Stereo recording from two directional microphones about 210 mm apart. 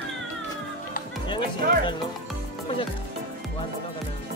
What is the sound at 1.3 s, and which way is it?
Speech, 20° left (ahead or behind).